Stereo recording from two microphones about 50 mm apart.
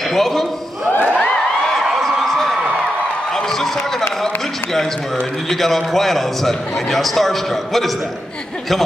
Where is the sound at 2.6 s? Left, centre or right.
Right.